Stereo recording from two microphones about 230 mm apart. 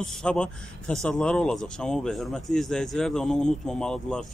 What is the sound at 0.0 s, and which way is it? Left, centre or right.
A man's voice, centre.